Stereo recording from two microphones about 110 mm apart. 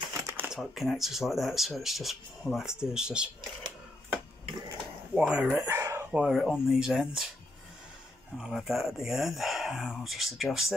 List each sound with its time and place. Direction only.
0.1 s a sound: 25° right (ahead or behind)
0.5 s speech: centre (ahead or behind)
5.1 s speech: 10° right (ahead or behind)
5.5 s chicken: 20° right (ahead or behind)
6.1 s speech: 5° right (ahead or behind)
8.4 s speech: 5° right (ahead or behind)